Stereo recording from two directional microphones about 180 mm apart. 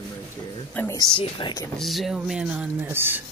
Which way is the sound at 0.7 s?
10° left (ahead or behind).